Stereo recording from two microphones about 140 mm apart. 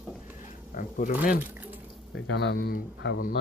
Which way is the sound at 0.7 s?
75° left (ahead or behind).